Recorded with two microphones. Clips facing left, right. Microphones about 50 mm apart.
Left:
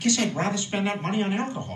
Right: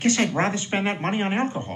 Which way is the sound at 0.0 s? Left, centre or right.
Right.